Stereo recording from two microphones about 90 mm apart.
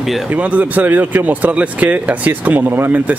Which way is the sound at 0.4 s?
15° right (ahead or behind).